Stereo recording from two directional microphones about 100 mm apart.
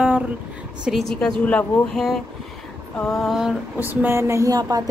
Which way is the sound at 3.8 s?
20° right (ahead or behind).